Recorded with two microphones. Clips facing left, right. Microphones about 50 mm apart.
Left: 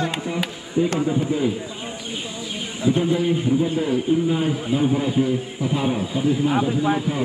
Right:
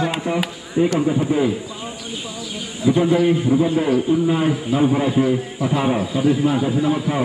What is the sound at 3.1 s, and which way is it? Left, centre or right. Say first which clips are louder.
A man's voice: right 4 dB; right.